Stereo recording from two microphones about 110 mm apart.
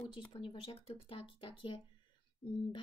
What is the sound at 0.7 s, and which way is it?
Speech, 60° left (ahead or behind).